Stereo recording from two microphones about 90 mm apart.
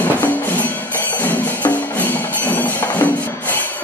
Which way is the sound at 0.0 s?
20° left (ahead or behind).